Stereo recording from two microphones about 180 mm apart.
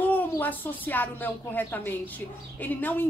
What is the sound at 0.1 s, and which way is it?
A woman's voice, 10° left (ahead or behind).